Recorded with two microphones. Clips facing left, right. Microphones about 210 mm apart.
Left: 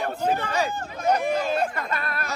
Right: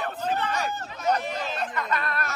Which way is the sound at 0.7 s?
50° left (ahead or behind).